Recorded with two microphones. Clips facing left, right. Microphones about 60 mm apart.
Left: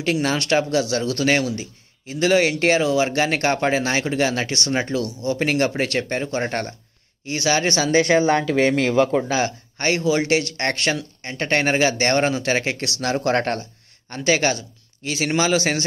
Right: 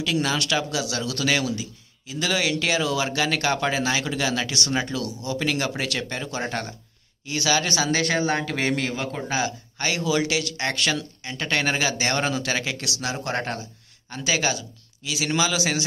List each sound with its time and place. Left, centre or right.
0.0 s speech: left
7.2 s speech: left
8.0 s speech: left
8.4 s speech: left
13.0 s speech: left
14.0 s speech: left